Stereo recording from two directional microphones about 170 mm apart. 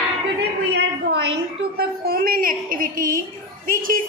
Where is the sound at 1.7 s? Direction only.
60° right (ahead or behind).